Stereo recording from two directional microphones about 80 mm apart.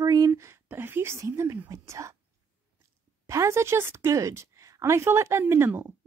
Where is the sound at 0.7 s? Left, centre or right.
Right.